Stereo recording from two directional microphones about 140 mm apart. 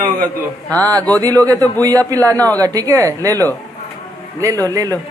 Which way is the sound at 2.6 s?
25° right (ahead or behind).